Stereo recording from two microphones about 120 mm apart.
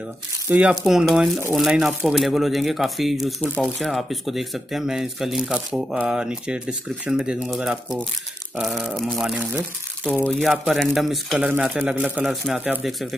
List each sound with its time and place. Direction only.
0.5 s speech: 10° right (ahead or behind)
11.3 s speech: 10° right (ahead or behind)